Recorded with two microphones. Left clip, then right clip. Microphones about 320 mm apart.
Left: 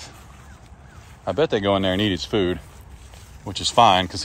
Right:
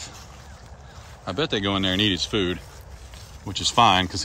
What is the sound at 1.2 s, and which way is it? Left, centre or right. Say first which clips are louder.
Speech: left 4 dB; centre.